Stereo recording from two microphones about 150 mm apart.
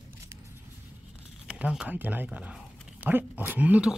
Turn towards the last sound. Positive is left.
turn(degrees=-10)  # may be behind; listen again after turning